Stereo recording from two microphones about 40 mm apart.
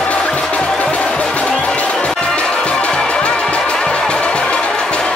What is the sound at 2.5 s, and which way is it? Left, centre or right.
Music, centre.